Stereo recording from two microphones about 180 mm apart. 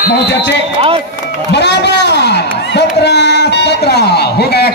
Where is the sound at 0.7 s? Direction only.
30° right (ahead or behind).